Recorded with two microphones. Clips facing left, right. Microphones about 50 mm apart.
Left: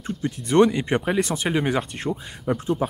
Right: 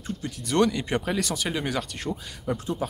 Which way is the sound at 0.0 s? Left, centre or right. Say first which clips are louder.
Left 5 dB; left.